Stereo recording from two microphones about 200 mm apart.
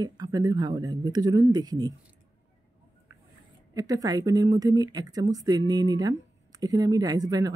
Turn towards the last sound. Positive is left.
turn(degrees=-20)  # may be behind; listen again after turning